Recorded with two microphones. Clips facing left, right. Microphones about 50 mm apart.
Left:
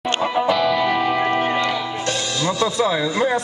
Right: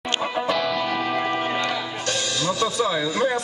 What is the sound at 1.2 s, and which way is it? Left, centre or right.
Music, left.